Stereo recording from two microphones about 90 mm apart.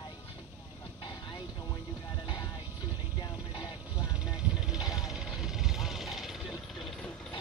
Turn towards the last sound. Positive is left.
turn(degrees=0)  # may be behind; listen again after turning